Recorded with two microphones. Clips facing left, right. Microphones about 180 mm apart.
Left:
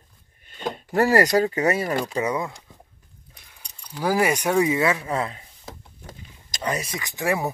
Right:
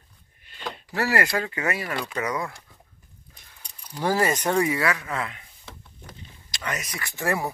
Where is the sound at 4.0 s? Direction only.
10° left (ahead or behind).